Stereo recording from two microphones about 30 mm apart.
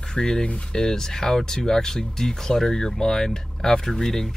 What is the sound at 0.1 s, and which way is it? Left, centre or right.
Speech, left.